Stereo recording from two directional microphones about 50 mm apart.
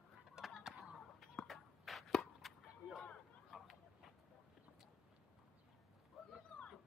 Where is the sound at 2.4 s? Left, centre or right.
Centre.